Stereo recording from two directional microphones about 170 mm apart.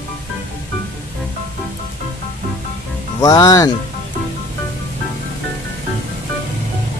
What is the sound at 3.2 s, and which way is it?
Speech, 20° left (ahead or behind).